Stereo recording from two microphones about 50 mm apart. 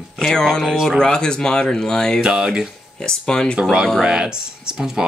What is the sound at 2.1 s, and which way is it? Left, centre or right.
Speech, centre.